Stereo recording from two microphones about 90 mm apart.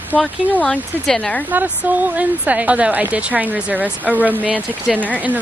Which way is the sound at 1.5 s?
15° right (ahead or behind).